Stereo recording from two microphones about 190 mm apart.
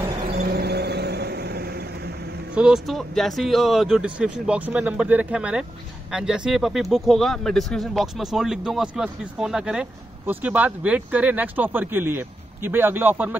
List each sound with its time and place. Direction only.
0.3 s vehicle: 55° right (ahead or behind)
2.5 s speech: 5° right (ahead or behind)